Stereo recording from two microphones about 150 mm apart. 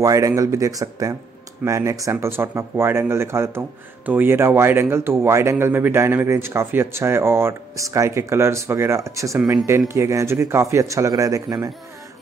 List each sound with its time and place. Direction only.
0.0 s speech: 20° right (ahead or behind)